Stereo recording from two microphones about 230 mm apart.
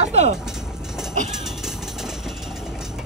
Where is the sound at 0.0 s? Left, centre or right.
Right.